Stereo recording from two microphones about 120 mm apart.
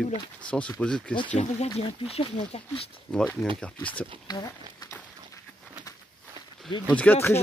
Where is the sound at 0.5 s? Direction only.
10° left (ahead or behind).